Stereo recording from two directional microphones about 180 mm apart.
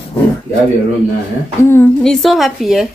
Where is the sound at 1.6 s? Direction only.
15° left (ahead or behind).